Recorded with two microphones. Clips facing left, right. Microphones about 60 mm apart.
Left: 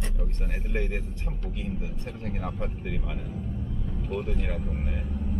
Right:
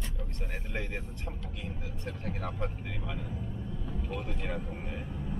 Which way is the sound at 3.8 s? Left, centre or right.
Centre.